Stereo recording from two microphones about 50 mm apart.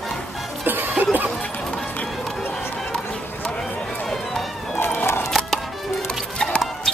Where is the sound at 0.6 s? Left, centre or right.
Right.